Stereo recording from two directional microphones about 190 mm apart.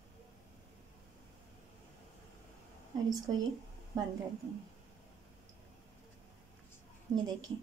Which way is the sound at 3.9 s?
20° right (ahead or behind).